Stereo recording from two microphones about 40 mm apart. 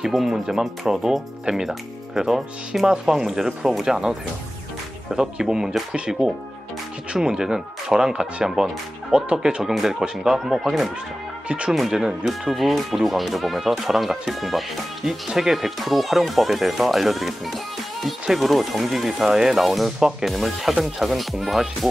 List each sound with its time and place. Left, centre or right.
0.1 s speech: centre; by 9.6 s right
9.6 s speech: centre
11.4 s speech: right
11.9 s speech: centre
12.3 s speech: centre
20.0 s speech: centre